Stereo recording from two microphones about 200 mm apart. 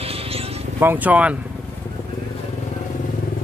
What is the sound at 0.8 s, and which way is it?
Speech, 10° right (ahead or behind).